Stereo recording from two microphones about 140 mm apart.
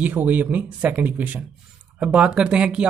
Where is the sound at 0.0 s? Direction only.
10° right (ahead or behind).